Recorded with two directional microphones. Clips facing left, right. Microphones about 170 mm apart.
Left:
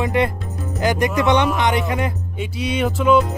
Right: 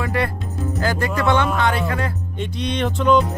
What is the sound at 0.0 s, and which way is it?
Speech, 20° left (ahead or behind).